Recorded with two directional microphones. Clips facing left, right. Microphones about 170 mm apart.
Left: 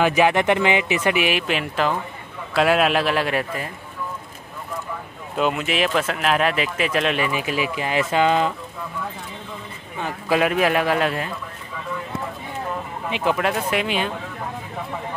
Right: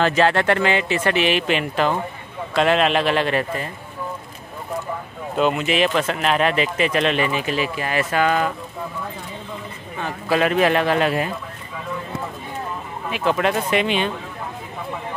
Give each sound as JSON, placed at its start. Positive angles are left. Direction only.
{"t": 0.0, "sound": "speech", "side_deg": 15}
{"t": 5.4, "sound": "speech", "side_deg": 0}
{"t": 9.9, "sound": "speech", "side_deg": 15}
{"t": 13.1, "sound": "speech", "side_deg": 10}